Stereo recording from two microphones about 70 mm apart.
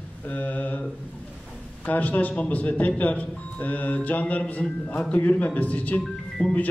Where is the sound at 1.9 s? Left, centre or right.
Left.